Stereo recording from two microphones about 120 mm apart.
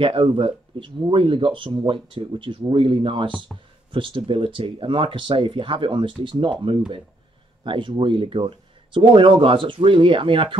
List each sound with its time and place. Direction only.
0.0 s speech: 45° right (ahead or behind)
7.6 s speech: 45° right (ahead or behind)